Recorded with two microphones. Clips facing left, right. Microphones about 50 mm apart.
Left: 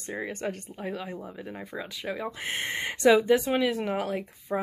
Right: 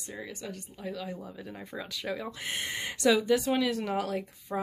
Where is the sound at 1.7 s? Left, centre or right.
Centre.